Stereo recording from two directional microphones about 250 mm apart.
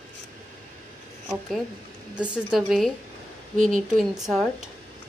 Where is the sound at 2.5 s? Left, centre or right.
Centre.